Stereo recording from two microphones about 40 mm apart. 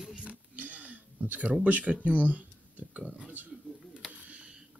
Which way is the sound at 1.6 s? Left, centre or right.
Right.